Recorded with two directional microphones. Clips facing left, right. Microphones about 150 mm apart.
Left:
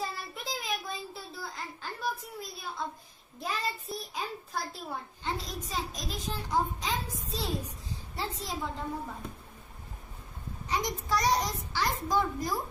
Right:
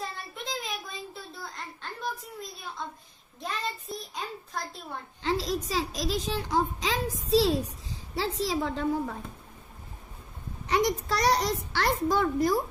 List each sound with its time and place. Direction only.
0.0 s child singing: centre (ahead or behind)
2.8 s a woman's voice: 5° left (ahead or behind)
3.3 s child singing: 5° left (ahead or behind)
5.2 s a child's voice: 90° right
10.7 s a child's voice: 70° right (ahead or behind)